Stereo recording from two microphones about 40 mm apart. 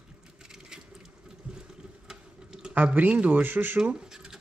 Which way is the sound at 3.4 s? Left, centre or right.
Right.